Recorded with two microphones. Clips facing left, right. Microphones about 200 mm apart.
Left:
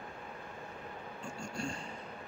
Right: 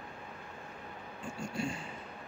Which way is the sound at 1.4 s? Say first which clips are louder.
Right 4 dB; 5° right (ahead or behind).